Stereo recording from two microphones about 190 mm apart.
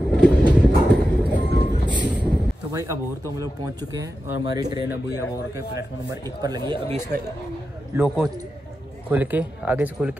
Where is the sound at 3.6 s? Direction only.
20° right (ahead or behind).